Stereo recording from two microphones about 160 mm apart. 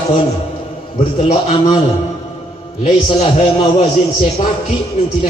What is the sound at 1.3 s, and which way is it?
Speech, 30° left (ahead or behind).